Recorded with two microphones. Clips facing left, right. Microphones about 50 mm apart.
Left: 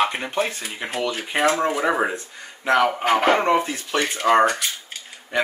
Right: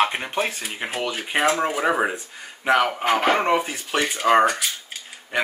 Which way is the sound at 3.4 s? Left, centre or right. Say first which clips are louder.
Left 1 dB; centre.